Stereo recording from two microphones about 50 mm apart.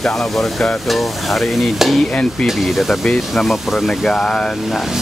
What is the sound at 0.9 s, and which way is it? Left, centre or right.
Stir, centre.